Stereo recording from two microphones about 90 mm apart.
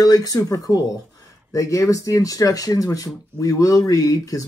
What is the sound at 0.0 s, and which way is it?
Speech, 40° left (ahead or behind).